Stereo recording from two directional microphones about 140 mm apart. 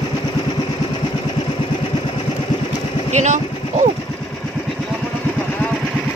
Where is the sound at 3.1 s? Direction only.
55° right (ahead or behind).